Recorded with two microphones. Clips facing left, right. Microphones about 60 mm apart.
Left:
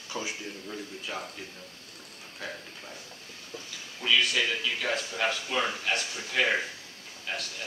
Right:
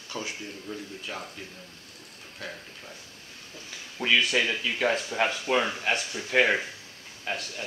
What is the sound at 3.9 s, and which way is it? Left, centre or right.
Speech, right.